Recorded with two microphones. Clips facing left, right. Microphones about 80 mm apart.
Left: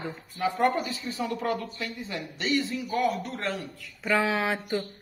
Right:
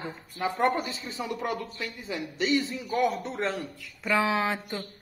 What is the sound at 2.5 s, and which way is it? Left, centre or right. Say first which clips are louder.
Speech: left 1 dB; centre.